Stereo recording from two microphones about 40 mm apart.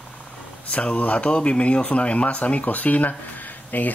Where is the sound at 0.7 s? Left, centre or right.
Left.